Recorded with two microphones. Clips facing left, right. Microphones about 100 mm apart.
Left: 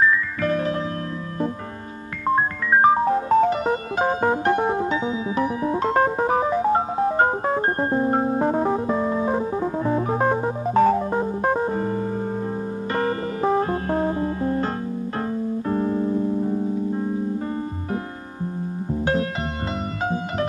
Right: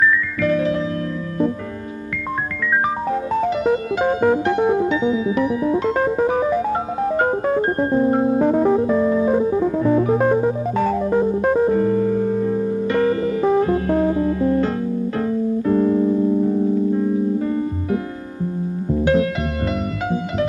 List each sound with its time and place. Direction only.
0.0 s music: 40° left (ahead or behind)
2.3 s music: 35° left (ahead or behind)
7.6 s music: 35° left (ahead or behind)